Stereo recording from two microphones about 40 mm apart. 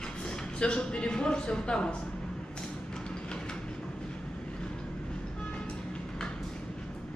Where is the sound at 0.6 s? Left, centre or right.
Left.